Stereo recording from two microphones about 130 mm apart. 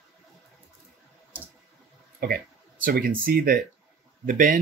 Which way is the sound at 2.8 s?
90° right.